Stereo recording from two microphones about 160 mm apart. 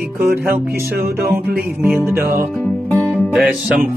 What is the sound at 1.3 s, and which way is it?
Speech, 15° right (ahead or behind).